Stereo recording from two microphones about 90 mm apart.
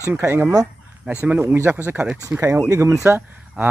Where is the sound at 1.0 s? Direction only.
15° right (ahead or behind).